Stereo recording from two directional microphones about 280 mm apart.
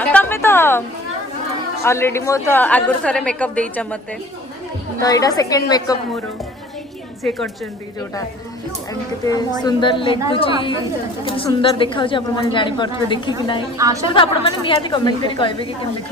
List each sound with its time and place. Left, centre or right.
0.0 s a woman's voice: centre
1.9 s a woman's voice: centre
5.0 s a woman's voice: centre
7.2 s a woman's voice: centre
9.2 s a woman's voice: centre
13.7 s a woman's voice: centre
14.0 s a woman's voice: centre